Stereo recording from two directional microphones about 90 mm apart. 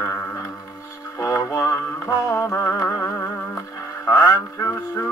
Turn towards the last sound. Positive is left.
turn(degrees=30)  # may be behind; listen again after turning